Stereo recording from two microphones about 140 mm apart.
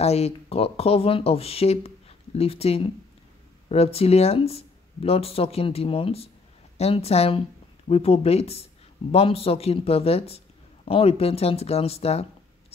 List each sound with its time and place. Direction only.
0.0 s speech: 50° left (ahead or behind)